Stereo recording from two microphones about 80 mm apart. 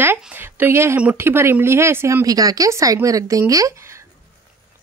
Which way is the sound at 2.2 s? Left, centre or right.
Right.